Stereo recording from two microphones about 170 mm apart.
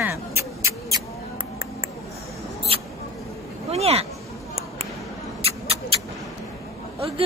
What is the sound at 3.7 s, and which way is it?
Speech, 35° right (ahead or behind).